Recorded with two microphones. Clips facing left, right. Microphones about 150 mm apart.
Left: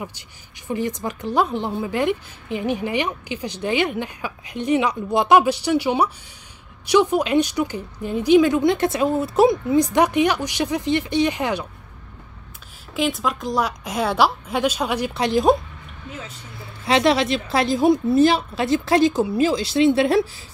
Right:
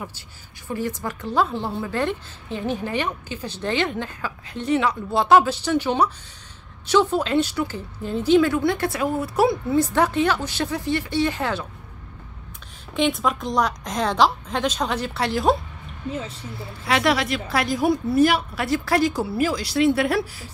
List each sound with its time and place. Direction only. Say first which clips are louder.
0.7 s a woman's voice: left 2 dB; 20° left (ahead or behind)
12.9 s a woman's voice: right 1 dB; centre (ahead or behind); by 15.5 s 15° left (ahead or behind)
16.8 s a woman's voice: left 3 dB; 25° left (ahead or behind)